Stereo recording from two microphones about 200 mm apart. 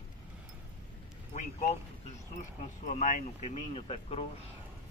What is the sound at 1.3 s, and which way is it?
Speech, 35° left (ahead or behind).